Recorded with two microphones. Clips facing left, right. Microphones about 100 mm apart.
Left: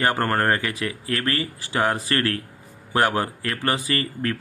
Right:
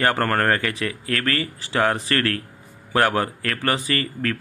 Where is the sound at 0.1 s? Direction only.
20° left (ahead or behind).